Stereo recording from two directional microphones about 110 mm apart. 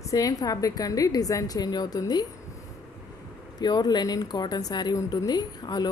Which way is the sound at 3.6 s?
40° left (ahead or behind).